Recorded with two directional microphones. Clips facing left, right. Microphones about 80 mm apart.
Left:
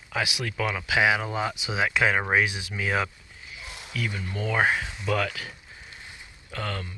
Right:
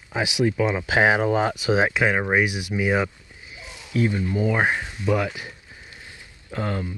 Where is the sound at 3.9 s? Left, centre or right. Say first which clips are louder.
Right 9 dB; right.